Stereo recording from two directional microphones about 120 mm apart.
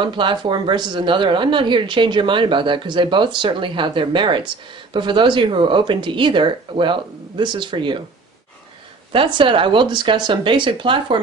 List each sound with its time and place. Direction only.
0.0 s speech: 40° right (ahead or behind)
9.1 s speech: 45° right (ahead or behind)